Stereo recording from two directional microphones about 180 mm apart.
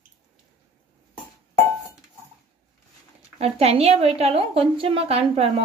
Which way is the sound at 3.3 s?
35° right (ahead or behind).